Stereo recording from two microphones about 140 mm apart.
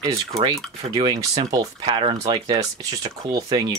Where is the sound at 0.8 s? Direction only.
40° right (ahead or behind).